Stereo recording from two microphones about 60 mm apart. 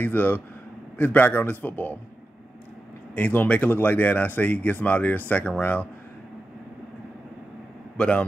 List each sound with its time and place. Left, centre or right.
0.0 s speech: left
3.2 s speech: left
8.0 s speech: centre